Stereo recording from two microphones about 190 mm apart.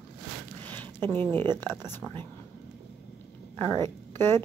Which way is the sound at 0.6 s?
10° left (ahead or behind).